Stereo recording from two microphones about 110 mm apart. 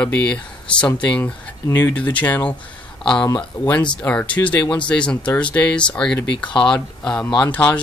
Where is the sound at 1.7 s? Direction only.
25° left (ahead or behind).